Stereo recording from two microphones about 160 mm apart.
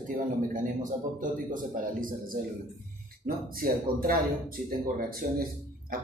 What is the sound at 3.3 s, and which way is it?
Speech, 65° right (ahead or behind).